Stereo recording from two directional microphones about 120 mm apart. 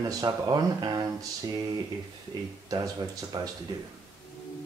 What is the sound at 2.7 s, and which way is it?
Speech, 30° right (ahead or behind).